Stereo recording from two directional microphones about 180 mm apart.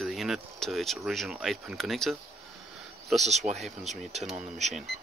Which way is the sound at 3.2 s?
40° right (ahead or behind).